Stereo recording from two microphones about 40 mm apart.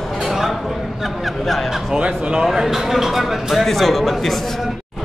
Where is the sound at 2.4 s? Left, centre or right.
Centre.